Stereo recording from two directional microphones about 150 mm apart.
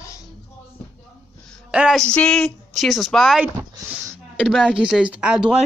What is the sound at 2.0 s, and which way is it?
A man's voice, 5° left (ahead or behind).